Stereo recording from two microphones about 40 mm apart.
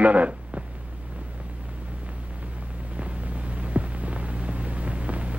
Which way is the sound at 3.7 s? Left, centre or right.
Right.